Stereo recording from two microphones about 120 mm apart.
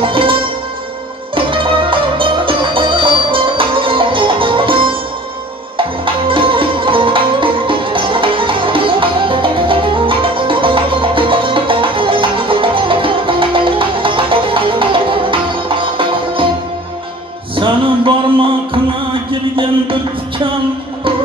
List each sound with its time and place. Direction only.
0.0 s zither: 45° right (ahead or behind)
1.3 s music: 45° right (ahead or behind)
17.6 s music: 45° right (ahead or behind)